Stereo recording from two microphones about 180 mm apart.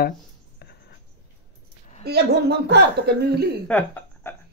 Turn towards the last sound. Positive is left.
turn(degrees=10)  # may be behind; listen again after turning